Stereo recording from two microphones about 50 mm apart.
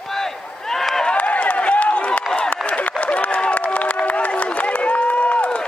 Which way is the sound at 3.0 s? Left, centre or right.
Left.